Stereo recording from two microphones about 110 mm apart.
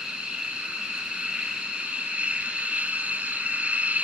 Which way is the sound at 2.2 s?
10° right (ahead or behind).